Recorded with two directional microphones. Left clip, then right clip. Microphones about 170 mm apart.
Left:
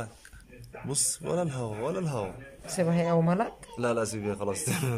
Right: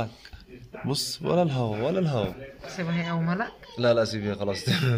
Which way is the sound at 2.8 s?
20° left (ahead or behind).